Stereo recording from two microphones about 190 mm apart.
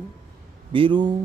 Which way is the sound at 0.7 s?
25° right (ahead or behind).